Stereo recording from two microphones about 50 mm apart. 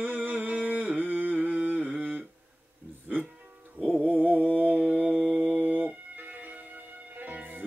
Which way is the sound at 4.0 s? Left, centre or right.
Right.